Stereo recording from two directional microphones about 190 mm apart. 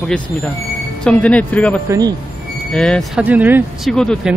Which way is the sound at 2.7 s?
5° left (ahead or behind).